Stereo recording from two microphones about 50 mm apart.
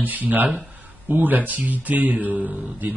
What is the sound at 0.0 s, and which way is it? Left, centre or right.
Speech, right.